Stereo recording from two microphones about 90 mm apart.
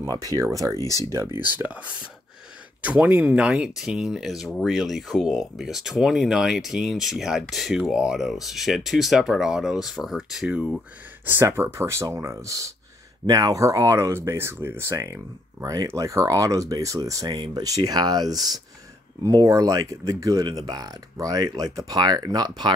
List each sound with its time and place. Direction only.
0.0 s speech: 40° right (ahead or behind)
1.4 s speech: 15° right (ahead or behind)
11.2 s speech: 25° right (ahead or behind)
15.6 s speech: 45° right (ahead or behind)
20.4 s speech: 50° right (ahead or behind)